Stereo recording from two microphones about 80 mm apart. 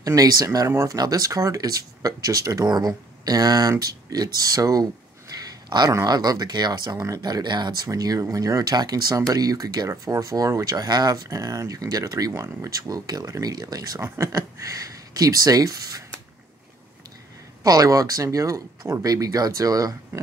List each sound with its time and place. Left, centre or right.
0.0 s speech: right
5.3 s a sound: right
6.0 s speech: right
11.2 s speech: right
14.0 s speech: right
17.6 s speech: right